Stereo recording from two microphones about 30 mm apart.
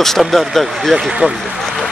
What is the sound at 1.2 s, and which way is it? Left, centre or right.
Speech, right.